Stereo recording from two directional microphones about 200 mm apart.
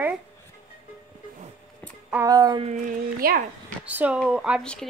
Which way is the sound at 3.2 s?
45° right (ahead or behind).